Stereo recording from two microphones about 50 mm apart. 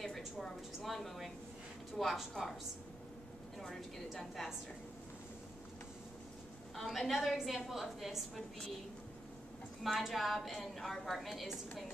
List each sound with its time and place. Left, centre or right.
0.4 s a woman's voice: centre
3.5 s a woman's voice: centre
6.8 s a woman's voice: centre
9.8 s a woman's voice: centre